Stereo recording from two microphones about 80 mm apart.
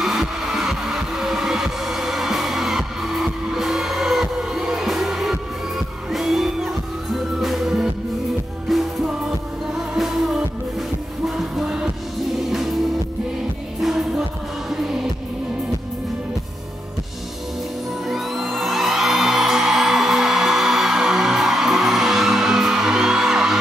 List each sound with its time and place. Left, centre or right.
0.0 s music: centre
18.0 s music: centre